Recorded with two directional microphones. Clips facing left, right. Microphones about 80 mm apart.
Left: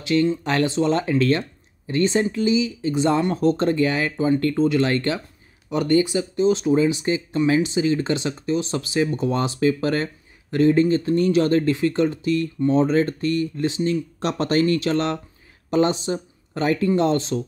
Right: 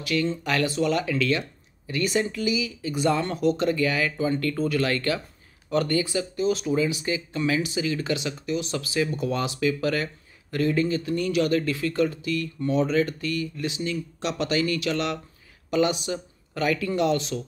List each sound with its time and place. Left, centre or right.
0.0 s speech: left
3.3 s speech: left